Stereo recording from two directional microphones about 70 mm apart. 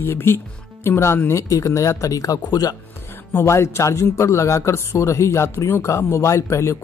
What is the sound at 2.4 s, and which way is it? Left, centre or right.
Speech, left.